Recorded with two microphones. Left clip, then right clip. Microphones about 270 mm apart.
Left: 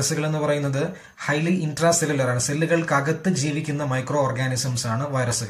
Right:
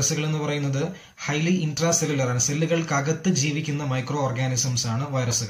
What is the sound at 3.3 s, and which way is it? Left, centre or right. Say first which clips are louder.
Speech: even; centre.